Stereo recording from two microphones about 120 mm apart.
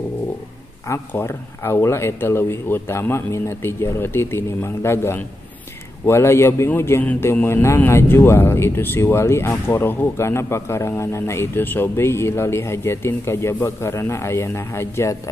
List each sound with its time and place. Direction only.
0.8 s a man's voice: 20° left (ahead or behind)